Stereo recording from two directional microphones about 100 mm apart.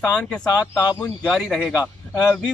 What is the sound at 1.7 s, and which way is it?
Speech, 25° left (ahead or behind).